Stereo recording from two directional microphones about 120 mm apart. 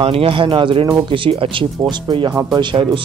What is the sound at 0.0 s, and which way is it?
Speech, 50° right (ahead or behind).